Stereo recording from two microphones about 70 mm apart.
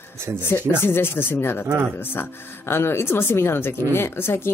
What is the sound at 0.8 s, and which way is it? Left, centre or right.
Speech, left.